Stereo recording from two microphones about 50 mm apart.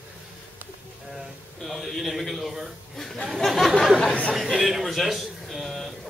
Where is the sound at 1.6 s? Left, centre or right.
Centre.